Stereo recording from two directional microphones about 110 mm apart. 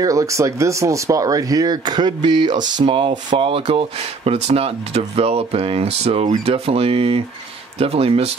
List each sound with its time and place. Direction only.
0.0 s speech: 30° right (ahead or behind); by 8.3 s 65° right (ahead or behind)